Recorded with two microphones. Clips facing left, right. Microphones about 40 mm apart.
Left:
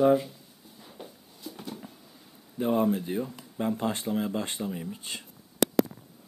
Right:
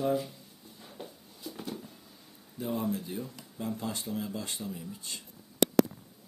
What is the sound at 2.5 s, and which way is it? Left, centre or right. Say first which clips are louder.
Speech: left 7 dB; left.